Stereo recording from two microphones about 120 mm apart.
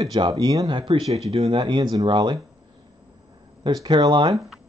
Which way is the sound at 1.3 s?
60° right (ahead or behind).